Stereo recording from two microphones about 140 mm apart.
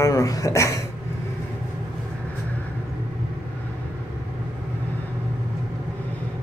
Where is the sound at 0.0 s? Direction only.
25° left (ahead or behind).